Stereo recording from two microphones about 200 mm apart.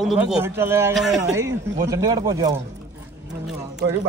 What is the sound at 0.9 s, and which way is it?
Speech, centre (ahead or behind).